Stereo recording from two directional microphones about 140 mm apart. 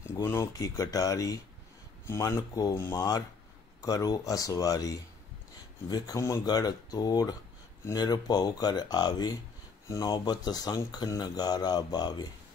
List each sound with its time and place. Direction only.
0.1 s speech: 20° left (ahead or behind)